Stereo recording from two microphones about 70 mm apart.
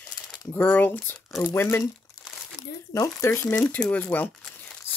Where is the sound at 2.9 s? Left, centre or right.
Left.